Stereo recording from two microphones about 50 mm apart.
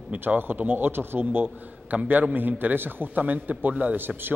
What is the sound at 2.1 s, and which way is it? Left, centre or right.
A man's voice, right.